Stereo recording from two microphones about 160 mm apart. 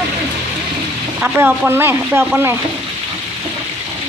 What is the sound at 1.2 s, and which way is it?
Speech, 10° right (ahead or behind).